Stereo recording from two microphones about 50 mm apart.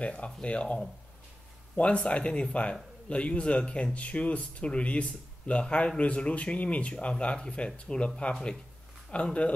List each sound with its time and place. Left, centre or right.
0.0 s speech: left
2.0 s speech: left
9.1 s speech: left